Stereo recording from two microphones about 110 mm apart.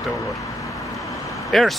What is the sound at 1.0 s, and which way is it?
Vehicle, 30° left (ahead or behind).